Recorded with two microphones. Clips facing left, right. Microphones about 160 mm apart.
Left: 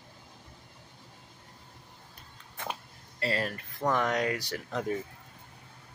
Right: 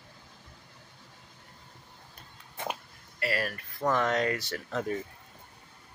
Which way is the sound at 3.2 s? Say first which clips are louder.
Even; 25° left (ahead or behind).